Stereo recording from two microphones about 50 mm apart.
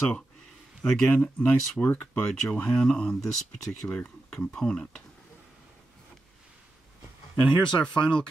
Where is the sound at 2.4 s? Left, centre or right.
Centre.